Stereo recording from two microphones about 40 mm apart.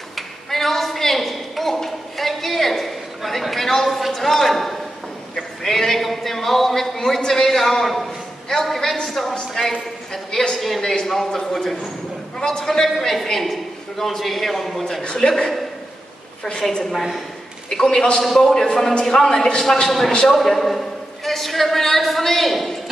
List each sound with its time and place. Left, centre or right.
0.1 s a sound: centre
9.0 s a man's voice: centre
17.6 s a man's voice: centre
19.6 s a man's voice: centre